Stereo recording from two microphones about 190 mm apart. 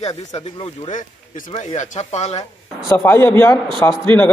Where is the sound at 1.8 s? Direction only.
35° left (ahead or behind).